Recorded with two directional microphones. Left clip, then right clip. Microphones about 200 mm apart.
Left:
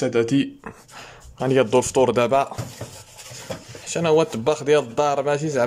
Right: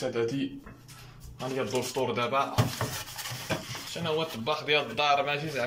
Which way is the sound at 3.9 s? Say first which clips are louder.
Left 13 dB; 40° left (ahead or behind).